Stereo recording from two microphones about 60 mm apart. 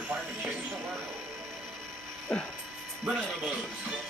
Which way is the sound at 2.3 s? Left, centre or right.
Centre.